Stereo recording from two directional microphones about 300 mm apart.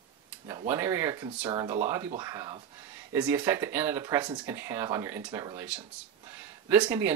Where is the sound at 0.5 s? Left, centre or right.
Centre.